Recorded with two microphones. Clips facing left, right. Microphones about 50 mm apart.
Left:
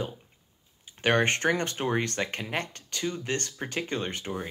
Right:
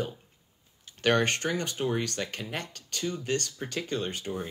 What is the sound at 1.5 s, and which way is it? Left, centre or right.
Speech, left.